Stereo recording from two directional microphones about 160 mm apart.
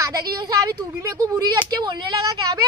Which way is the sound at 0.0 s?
25° right (ahead or behind).